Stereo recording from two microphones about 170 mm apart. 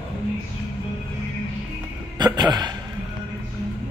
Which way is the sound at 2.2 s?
25° right (ahead or behind).